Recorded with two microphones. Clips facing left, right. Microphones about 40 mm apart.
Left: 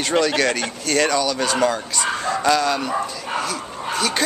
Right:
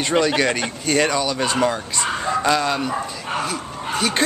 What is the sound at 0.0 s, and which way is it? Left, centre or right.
Speech, centre.